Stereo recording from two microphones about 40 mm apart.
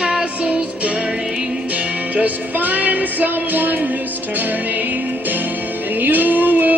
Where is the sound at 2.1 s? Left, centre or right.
Right.